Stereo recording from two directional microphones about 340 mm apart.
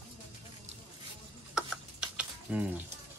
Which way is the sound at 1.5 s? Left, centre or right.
Centre.